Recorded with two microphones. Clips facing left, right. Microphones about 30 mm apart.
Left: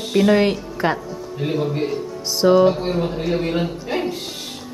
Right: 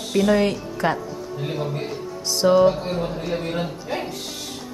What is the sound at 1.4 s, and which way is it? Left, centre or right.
A woman's voice, centre.